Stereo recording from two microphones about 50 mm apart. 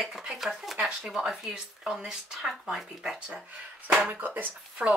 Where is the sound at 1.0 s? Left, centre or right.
Centre.